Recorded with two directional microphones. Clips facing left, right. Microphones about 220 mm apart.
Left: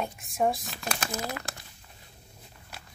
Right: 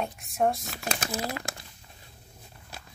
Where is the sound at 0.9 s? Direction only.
25° right (ahead or behind).